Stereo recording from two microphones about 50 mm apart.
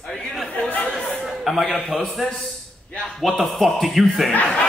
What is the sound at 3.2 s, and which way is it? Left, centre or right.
A man's voice, centre.